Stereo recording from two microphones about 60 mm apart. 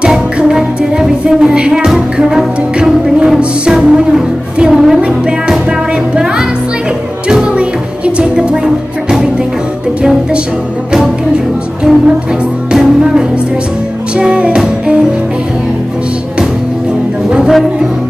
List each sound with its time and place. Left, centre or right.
0.0 s music: centre
7.5 s music: centre
10.9 s music: centre
17.5 s music: centre